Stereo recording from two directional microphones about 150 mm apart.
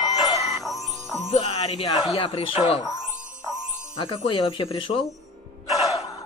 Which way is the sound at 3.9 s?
35° left (ahead or behind).